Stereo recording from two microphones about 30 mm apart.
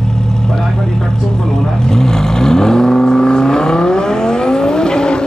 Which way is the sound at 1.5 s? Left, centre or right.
Left.